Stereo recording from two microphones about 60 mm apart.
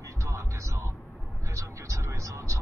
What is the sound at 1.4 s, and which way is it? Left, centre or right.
Vehicle, right.